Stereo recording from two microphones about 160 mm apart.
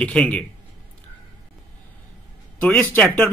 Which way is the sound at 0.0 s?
5° left (ahead or behind).